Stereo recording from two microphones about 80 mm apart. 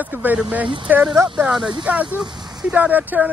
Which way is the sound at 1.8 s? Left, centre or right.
Right.